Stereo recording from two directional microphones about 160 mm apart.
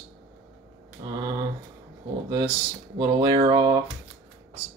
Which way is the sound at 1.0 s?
30° right (ahead or behind).